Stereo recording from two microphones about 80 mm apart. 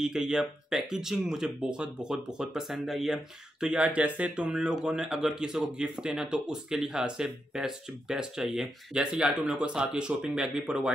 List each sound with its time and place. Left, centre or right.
0.0 s speech: centre